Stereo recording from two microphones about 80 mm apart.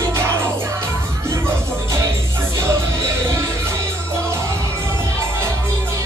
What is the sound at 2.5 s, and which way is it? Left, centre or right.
Music, right.